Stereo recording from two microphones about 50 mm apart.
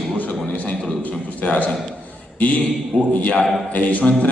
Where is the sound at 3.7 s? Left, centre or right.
Left.